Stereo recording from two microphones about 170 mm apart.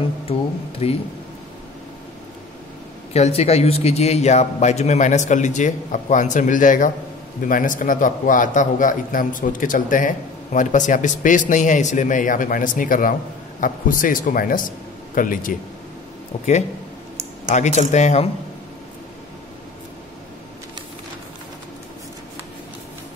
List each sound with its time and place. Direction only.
0.3 s speech: 35° left (ahead or behind)
3.1 s a man's voice: 40° left (ahead or behind)
17.5 s a man's voice: 45° left (ahead or behind)